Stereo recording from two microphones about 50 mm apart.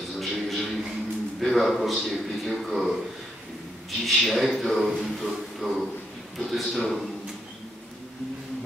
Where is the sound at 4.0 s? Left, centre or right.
Centre.